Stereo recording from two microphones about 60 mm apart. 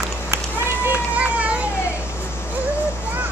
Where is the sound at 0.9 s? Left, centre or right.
Right.